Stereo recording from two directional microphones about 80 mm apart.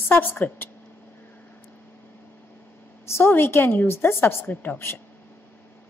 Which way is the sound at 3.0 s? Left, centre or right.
Left.